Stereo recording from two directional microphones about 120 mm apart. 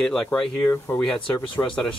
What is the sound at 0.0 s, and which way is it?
Speech, 5° left (ahead or behind).